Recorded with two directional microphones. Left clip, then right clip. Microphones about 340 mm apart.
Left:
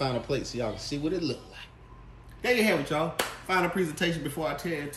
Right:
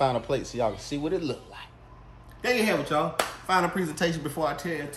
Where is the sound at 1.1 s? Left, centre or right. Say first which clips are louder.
Right 2 dB; right.